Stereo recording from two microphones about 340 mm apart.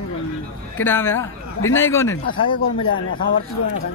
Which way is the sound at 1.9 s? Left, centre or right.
Centre.